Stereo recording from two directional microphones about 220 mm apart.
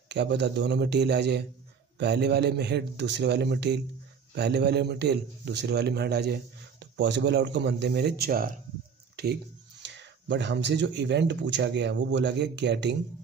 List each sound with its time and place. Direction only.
0.1 s a man's voice: 50° right (ahead or behind)